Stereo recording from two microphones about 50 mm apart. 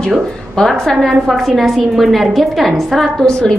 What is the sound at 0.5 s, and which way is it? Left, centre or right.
A woman's voice, centre.